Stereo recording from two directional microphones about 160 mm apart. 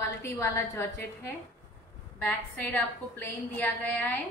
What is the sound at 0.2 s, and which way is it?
Speech, 15° left (ahead or behind).